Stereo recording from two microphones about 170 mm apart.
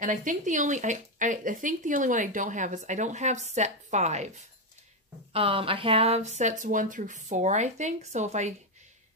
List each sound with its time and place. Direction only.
0.0 s speech: 50° right (ahead or behind)
5.3 s speech: 35° right (ahead or behind)